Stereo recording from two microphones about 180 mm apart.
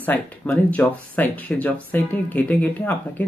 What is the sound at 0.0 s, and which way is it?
Speech, 10° left (ahead or behind).